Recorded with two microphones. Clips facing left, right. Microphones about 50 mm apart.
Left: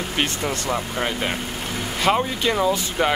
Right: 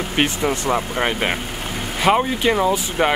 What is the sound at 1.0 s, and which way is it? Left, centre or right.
Speech, right.